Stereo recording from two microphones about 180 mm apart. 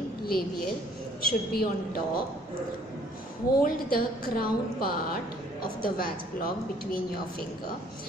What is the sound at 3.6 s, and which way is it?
A woman's voice, 55° left (ahead or behind).